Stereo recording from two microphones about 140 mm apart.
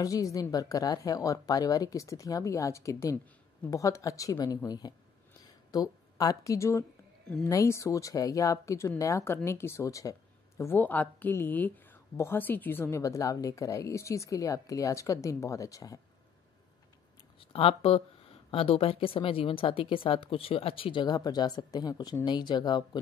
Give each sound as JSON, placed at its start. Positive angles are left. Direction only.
{"t": 0.0, "sound": "a woman's voice", "side_deg": 25}
{"t": 17.4, "sound": "speech", "side_deg": 40}